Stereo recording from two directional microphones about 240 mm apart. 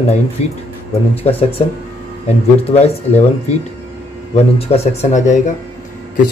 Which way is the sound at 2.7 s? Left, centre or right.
Left.